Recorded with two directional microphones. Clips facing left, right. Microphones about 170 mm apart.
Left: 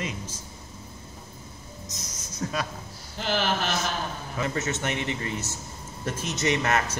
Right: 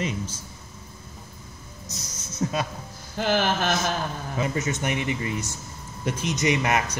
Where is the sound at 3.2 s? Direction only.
45° right (ahead or behind).